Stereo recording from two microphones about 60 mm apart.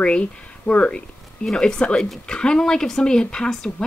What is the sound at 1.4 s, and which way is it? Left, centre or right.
Speech, centre.